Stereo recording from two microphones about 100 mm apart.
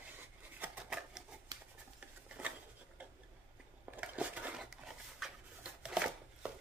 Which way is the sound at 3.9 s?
15° right (ahead or behind).